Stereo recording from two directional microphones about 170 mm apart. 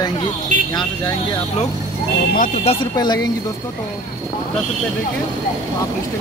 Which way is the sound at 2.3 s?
50° left (ahead or behind).